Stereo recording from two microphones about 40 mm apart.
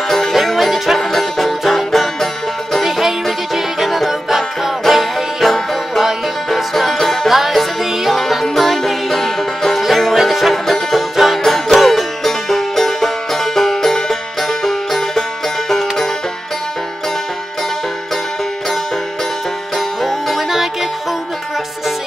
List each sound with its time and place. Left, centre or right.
0.1 s music: centre
7.3 s music: centre
20.0 s music: centre